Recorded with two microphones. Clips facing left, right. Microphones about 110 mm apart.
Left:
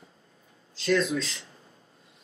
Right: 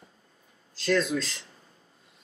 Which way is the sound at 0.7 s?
Centre (ahead or behind).